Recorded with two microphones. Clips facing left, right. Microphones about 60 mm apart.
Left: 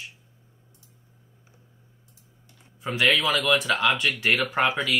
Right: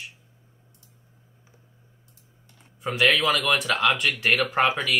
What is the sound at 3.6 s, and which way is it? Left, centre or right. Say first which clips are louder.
Speech: even; centre.